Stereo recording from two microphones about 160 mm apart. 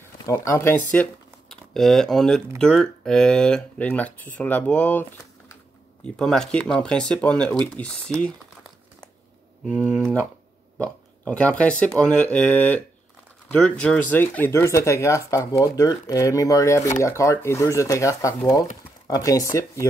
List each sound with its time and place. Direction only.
0.3 s speech: 15° left (ahead or behind)
1.5 s speech: centre (ahead or behind)
6.0 s speech: 5° left (ahead or behind)
9.8 s speech: 5° right (ahead or behind)
10.8 s speech: 10° left (ahead or behind)